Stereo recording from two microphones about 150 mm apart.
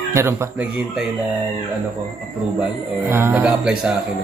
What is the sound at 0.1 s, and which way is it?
Speech, 15° right (ahead or behind).